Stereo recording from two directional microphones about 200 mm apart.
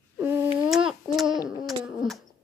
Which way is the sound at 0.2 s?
10° right (ahead or behind).